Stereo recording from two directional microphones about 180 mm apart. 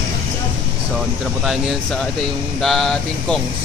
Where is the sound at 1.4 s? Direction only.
Centre (ahead or behind).